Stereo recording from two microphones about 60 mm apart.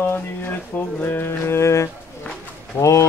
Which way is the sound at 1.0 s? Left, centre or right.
Left.